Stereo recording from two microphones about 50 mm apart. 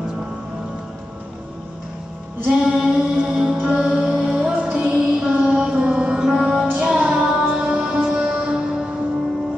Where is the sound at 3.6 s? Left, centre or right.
Centre.